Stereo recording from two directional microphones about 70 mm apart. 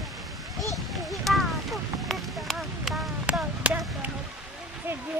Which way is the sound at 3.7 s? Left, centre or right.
Right.